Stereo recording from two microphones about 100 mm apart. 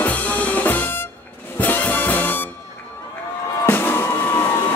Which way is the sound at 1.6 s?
15° left (ahead or behind).